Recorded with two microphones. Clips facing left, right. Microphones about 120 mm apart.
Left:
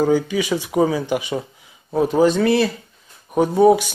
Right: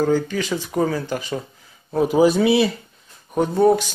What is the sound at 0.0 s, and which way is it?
Speech, 10° left (ahead or behind).